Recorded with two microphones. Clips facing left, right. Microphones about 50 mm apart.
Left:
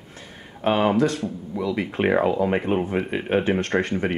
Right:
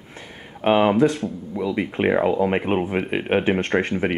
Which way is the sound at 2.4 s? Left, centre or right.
Right.